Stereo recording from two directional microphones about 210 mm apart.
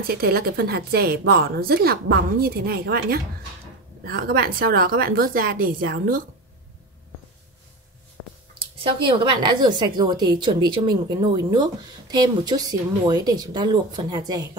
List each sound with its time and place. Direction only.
0.0 s a woman's voice: 45° right (ahead or behind)
8.7 s speech: 25° right (ahead or behind)